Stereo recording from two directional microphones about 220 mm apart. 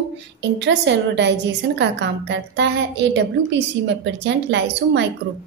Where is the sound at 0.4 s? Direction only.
50° right (ahead or behind).